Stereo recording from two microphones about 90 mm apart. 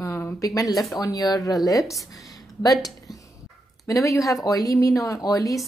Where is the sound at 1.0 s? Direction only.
45° left (ahead or behind).